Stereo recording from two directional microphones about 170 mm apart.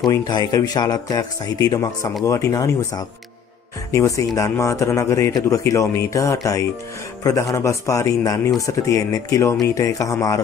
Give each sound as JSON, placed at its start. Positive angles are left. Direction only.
{"t": 0.0, "sound": "a man's voice", "side_deg": 25}